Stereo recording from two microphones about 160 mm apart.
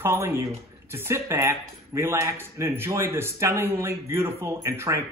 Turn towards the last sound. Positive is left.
turn(degrees=-15)  # may be behind; listen again after turning